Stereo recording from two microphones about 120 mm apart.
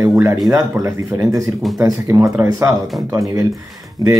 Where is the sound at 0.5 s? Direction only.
25° right (ahead or behind).